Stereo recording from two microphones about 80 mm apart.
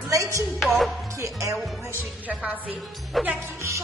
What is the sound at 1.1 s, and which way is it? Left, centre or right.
Speech, right.